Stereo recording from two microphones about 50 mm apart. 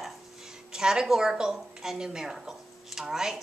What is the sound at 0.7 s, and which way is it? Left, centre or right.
A woman's voice, centre.